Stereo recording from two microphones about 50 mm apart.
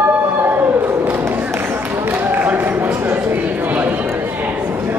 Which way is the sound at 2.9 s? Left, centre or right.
Right.